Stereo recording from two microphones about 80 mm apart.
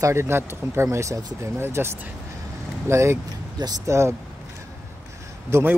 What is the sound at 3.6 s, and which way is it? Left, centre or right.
Speech, right.